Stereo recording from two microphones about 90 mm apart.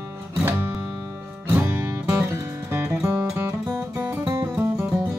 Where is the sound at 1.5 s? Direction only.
25° right (ahead or behind).